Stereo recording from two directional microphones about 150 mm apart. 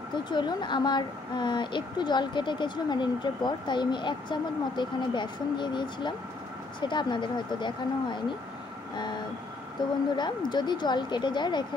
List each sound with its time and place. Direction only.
0.1 s speech: 30° left (ahead or behind)